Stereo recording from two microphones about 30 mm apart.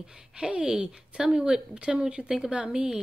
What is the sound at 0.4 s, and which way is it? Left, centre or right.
Speech, right.